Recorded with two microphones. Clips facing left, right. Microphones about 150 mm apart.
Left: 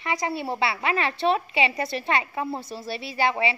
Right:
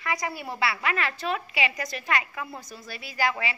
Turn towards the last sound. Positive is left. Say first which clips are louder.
# left 4 dB
turn(degrees=25)  # may be behind; listen again after turning